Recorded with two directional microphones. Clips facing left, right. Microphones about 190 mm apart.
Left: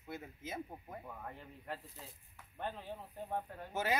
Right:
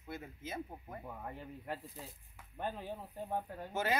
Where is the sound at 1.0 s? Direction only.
15° right (ahead or behind).